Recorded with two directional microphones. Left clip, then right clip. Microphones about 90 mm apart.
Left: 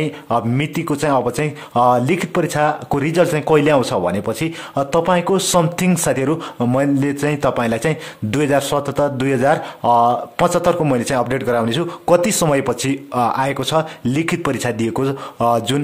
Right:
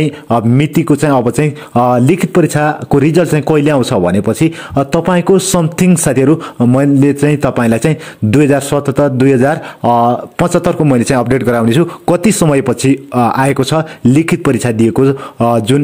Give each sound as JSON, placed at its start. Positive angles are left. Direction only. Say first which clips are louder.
{"t": 0.0, "sound": "speech", "louder": "right 6 dB", "side_deg": -40}
{"t": 10.9, "sound": "speech", "louder": "right 6 dB", "side_deg": -50}
{"t": 12.1, "sound": "speech", "louder": "right 1 dB", "side_deg": -35}
{"t": 13.3, "sound": "speech", "louder": "right 6 dB", "side_deg": -45}